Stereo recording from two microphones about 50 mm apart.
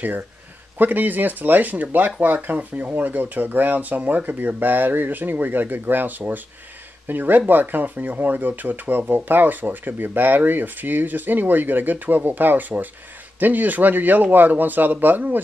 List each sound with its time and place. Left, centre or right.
0.7 s speech: right